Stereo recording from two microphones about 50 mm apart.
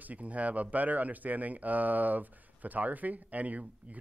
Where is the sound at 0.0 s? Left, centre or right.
Right.